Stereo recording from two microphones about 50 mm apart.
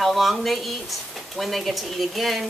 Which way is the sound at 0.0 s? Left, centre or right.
Centre.